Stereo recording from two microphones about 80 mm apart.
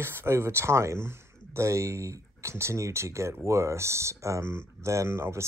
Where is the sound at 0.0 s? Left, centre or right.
Right.